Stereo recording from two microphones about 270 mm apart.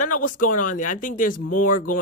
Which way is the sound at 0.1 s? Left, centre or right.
Left.